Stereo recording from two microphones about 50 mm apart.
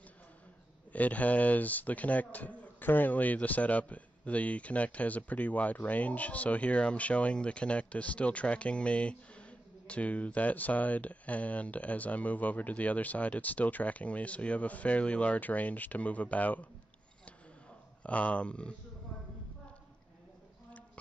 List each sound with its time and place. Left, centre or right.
0.9 s speech: left
18.0 s speech: left